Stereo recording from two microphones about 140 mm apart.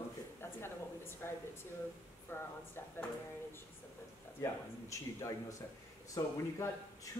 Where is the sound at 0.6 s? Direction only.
15° left (ahead or behind).